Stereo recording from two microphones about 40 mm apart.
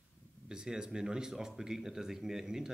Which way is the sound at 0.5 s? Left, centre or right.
Centre.